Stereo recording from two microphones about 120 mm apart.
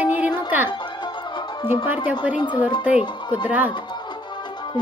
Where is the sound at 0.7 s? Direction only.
40° left (ahead or behind).